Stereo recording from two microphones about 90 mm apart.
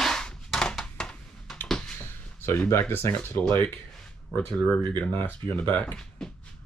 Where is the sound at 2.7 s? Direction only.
25° left (ahead or behind).